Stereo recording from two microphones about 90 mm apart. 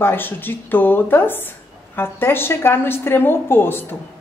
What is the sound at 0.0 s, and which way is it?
A woman's voice, 25° left (ahead or behind).